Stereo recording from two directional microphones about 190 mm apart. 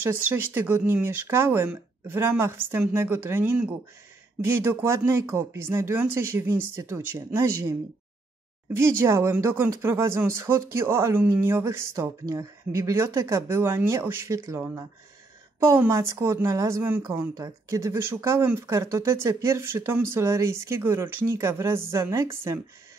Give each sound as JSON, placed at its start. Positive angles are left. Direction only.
{"t": 0.1, "sound": "a woman's voice", "side_deg": -10}
{"t": 8.7, "sound": "a woman's voice", "side_deg": -15}